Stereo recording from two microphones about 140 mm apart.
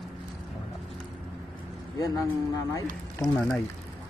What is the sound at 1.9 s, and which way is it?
Speech, 25° left (ahead or behind).